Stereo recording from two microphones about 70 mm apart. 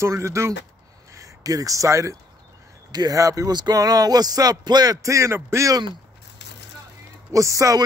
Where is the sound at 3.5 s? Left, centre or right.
Right.